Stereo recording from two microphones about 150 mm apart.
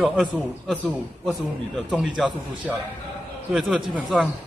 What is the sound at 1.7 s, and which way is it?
Speech, 5° left (ahead or behind).